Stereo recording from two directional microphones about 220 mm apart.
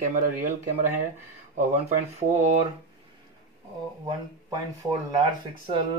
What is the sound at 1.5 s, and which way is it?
Speech, 30° right (ahead or behind).